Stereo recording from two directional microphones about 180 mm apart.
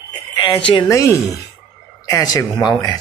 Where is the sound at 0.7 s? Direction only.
20° left (ahead or behind).